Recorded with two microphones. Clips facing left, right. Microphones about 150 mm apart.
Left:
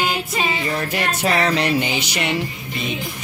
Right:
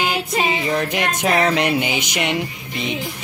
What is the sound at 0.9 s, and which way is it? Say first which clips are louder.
Music: right 1 dB; 15° right (ahead or behind).